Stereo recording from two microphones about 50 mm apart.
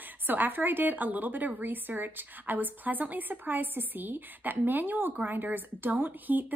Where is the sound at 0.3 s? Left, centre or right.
Right.